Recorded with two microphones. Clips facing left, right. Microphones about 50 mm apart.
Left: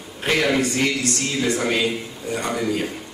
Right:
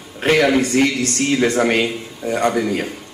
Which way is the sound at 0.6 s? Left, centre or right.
Right.